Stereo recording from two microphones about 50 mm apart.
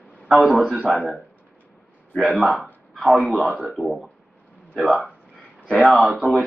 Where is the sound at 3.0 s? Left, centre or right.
Centre.